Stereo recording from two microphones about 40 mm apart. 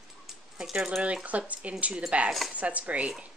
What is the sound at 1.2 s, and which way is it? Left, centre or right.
Speech, right.